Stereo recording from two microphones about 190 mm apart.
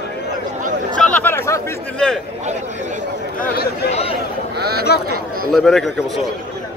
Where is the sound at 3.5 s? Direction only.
55° left (ahead or behind).